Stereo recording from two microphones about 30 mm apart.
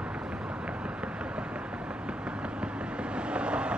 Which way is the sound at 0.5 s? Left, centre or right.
Right.